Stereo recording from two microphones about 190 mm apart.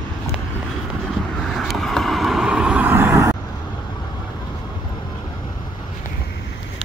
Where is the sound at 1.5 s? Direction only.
Centre (ahead or behind).